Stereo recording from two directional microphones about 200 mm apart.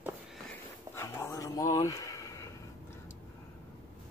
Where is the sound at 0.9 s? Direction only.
10° left (ahead or behind).